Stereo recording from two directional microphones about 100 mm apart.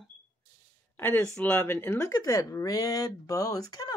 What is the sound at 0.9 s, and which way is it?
Speech, 20° left (ahead or behind).